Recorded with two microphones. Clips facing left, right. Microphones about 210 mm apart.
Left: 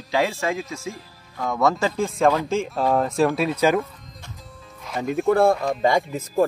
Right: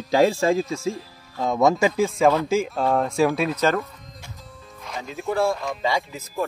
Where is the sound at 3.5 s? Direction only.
10° left (ahead or behind).